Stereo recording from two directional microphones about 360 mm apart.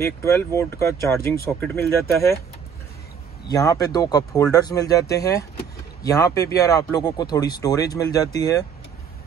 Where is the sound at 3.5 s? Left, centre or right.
Centre.